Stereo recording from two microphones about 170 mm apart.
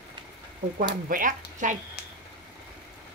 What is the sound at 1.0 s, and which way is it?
Speech, 55° right (ahead or behind).